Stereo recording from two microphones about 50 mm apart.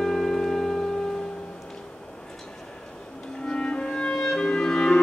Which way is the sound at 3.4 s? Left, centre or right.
Centre.